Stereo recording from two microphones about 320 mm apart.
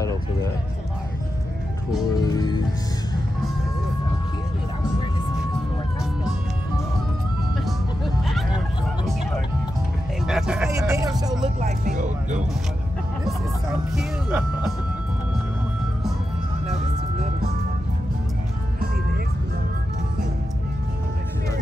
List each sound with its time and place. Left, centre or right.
2.1 s music: centre
7.6 s vehicle: centre
10.2 s vehicle: centre
11.8 s music: right
13.9 s speech: centre